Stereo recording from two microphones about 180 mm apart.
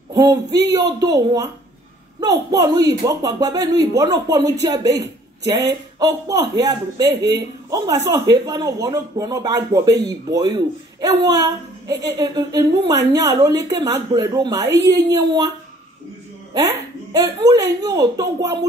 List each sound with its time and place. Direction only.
0.1 s a woman's voice: 20° right (ahead or behind)
17.1 s a woman's voice: 20° right (ahead or behind)